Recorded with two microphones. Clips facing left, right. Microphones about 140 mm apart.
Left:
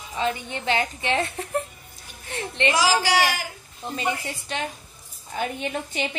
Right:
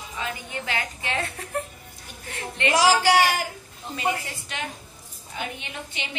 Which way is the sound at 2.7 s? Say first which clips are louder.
Right 4 dB; 55° right (ahead or behind).